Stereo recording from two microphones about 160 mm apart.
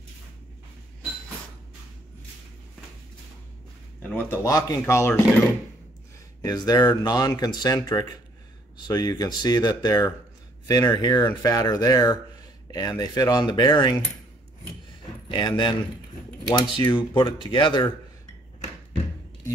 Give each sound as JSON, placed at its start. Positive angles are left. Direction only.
{"t": 4.1, "sound": "speech", "side_deg": 15}
{"t": 6.4, "sound": "speech", "side_deg": 25}
{"t": 15.2, "sound": "speech", "side_deg": 30}